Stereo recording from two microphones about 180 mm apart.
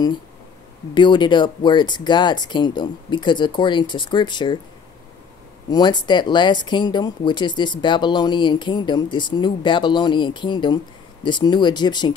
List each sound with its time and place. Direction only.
0.9 s speech: 25° left (ahead or behind)
5.7 s speech: 25° left (ahead or behind)